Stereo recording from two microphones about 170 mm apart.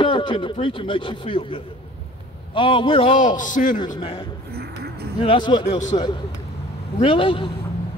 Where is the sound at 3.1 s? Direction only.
50° left (ahead or behind).